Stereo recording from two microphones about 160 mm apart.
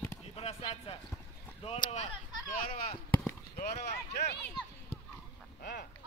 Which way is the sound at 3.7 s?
85° left.